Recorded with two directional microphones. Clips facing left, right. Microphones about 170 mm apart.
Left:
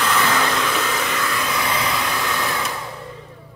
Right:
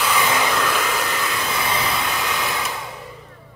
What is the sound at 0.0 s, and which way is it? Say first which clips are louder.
Hair dryer: left 1 dB; 10° right (ahead or behind).